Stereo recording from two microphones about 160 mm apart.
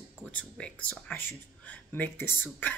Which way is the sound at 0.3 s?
10° left (ahead or behind).